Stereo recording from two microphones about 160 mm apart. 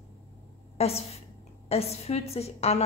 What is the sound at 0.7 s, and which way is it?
A woman's voice, 40° left (ahead or behind).